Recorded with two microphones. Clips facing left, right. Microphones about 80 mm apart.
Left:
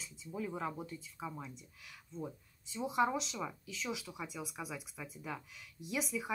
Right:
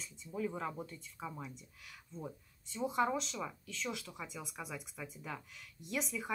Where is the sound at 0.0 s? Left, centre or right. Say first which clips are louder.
Right 2 dB; centre.